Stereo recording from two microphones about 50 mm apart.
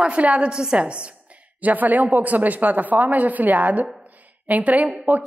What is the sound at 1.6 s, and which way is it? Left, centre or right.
A woman's voice, right.